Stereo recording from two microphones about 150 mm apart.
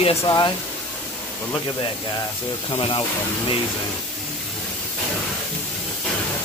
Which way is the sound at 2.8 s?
35° left (ahead or behind).